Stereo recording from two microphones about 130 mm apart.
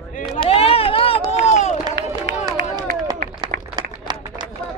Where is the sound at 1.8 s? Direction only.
30° right (ahead or behind).